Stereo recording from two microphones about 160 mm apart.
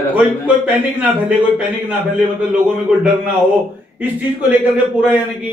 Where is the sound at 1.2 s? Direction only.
10° right (ahead or behind).